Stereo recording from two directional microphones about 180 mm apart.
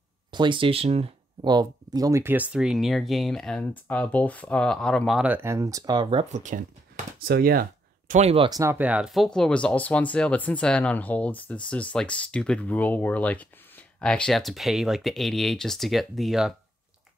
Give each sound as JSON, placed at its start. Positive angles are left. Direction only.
{"t": 0.3, "sound": "speech", "side_deg": -25}
{"t": 7.2, "sound": "speech", "side_deg": -60}
{"t": 8.1, "sound": "speech", "side_deg": -35}
{"t": 8.5, "sound": "speech", "side_deg": -15}